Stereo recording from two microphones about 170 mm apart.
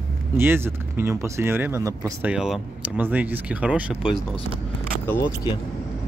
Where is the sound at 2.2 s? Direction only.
5° right (ahead or behind).